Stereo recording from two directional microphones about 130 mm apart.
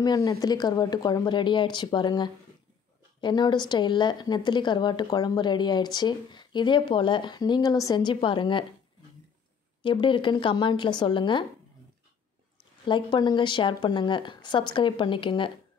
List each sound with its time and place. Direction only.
0.0 s a woman's voice: 30° left (ahead or behind)
9.8 s a woman's voice: 40° left (ahead or behind)
12.8 s a woman's voice: 40° left (ahead or behind)